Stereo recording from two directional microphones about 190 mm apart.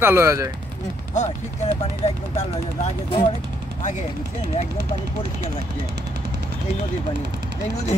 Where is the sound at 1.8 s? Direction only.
30° left (ahead or behind).